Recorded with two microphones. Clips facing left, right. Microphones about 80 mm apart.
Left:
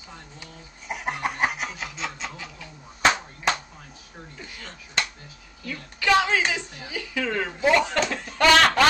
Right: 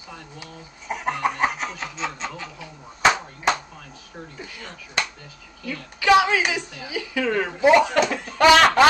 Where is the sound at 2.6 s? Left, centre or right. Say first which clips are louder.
Right 2 dB; centre.